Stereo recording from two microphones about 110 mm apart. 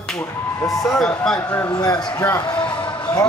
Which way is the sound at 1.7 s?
35° left (ahead or behind).